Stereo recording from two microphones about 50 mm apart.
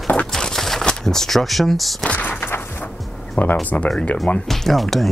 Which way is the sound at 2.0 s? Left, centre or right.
Left.